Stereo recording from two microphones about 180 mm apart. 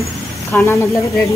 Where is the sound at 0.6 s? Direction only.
15° left (ahead or behind).